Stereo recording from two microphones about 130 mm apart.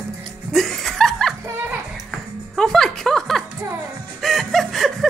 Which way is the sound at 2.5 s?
5° left (ahead or behind).